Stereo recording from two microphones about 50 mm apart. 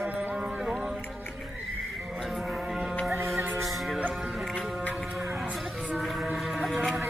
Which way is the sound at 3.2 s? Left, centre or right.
Right.